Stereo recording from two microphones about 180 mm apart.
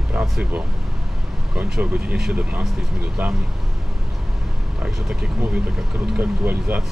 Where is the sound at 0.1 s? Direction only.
5° right (ahead or behind).